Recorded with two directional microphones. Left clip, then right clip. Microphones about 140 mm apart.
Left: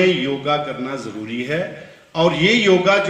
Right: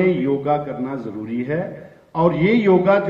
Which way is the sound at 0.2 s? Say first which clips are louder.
Even; 20° right (ahead or behind).